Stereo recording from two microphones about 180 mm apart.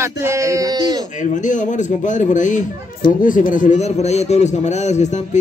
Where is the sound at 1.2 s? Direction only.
45° left (ahead or behind).